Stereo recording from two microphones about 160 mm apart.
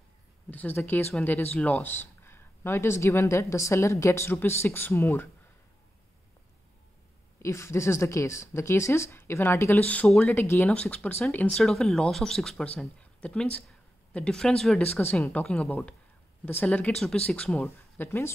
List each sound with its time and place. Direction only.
0.5 s speech: 10° left (ahead or behind)
7.4 s speech: 15° left (ahead or behind)
10.4 s speech: 15° left (ahead or behind)